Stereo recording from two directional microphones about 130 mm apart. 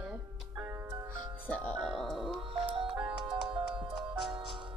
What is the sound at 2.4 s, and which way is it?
Music, 45° right (ahead or behind).